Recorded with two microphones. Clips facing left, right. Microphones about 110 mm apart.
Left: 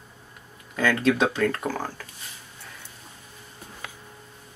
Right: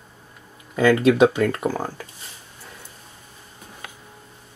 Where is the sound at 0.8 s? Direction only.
10° right (ahead or behind).